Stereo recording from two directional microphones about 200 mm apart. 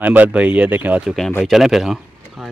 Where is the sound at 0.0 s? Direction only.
10° right (ahead or behind).